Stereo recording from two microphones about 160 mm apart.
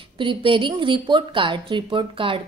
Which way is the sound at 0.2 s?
30° right (ahead or behind).